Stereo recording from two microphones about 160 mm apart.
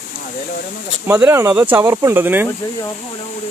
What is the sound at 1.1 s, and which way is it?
Speech, 15° right (ahead or behind).